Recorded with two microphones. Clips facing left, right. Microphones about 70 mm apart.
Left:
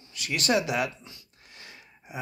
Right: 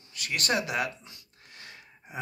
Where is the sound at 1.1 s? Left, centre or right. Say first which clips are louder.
Left 1 dB; right.